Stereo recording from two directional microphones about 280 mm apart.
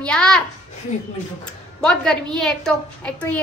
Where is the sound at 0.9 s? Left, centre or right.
Left.